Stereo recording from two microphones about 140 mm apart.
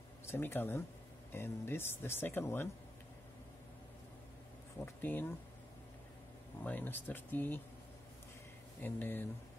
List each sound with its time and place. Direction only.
0.3 s speech: 15° left (ahead or behind)
4.8 s speech: 15° left (ahead or behind)
6.6 s speech: 10° left (ahead or behind)
8.8 s speech: 15° left (ahead or behind)